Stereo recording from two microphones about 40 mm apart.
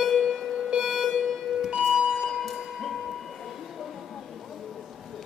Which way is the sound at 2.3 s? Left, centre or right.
Centre.